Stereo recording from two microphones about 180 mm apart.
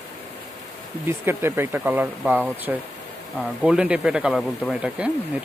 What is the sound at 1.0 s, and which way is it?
Speech, 15° right (ahead or behind).